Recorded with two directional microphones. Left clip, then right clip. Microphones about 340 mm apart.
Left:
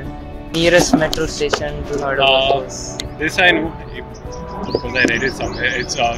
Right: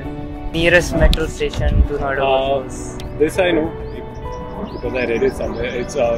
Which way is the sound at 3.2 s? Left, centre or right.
Left.